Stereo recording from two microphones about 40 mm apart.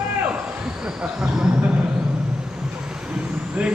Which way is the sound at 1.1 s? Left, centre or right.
Centre.